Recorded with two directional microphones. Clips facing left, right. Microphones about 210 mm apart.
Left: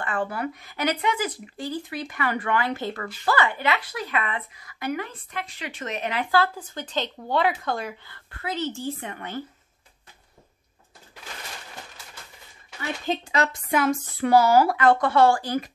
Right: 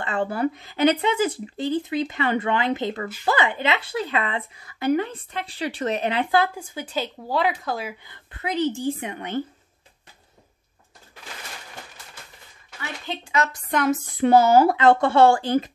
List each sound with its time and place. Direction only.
0.0 s a woman's voice: 25° right (ahead or behind)
6.4 s a woman's voice: 10° right (ahead or behind)
8.0 s a woman's voice: 20° right (ahead or behind)
13.1 s a woman's voice: 35° left (ahead or behind)
14.1 s a woman's voice: 25° right (ahead or behind)